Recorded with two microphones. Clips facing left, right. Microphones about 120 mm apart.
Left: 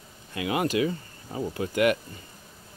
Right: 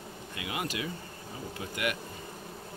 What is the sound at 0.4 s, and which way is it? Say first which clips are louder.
Speech: left 10 dB; 35° left (ahead or behind).